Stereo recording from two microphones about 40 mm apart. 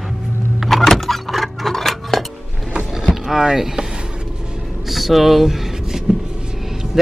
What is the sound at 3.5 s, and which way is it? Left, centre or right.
Speech, centre.